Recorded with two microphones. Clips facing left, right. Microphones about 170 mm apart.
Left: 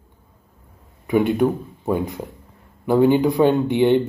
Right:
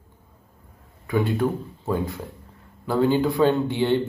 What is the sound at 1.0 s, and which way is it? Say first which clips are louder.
Speech: left 5 dB; 20° left (ahead or behind).